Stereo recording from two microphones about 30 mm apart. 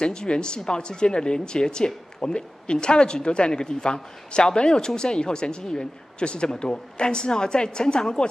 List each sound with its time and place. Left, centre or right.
0.0 s speech: left